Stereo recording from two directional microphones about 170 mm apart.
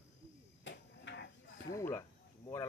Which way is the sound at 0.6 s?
90° left.